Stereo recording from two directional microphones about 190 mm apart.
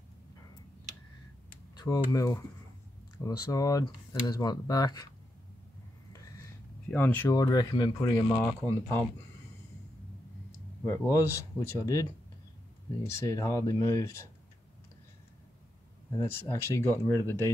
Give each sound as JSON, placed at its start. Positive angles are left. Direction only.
{"t": 1.8, "sound": "speech", "side_deg": 20}
{"t": 6.9, "sound": "speech", "side_deg": 10}
{"t": 10.9, "sound": "speech", "side_deg": 15}
{"t": 16.1, "sound": "speech", "side_deg": 15}